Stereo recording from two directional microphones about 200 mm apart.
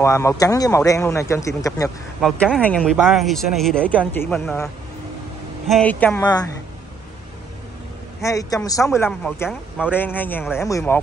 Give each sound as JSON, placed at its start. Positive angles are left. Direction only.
{"t": 0.0, "sound": "speech", "side_deg": 15}
{"t": 2.2, "sound": "speech", "side_deg": 5}
{"t": 5.7, "sound": "a woman's voice", "side_deg": 5}
{"t": 8.2, "sound": "speech", "side_deg": 15}